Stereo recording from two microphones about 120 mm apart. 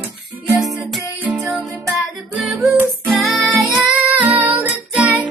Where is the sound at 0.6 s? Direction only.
Centre (ahead or behind).